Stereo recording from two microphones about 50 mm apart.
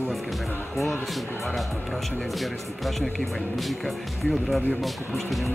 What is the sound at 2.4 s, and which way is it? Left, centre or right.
Speech, centre.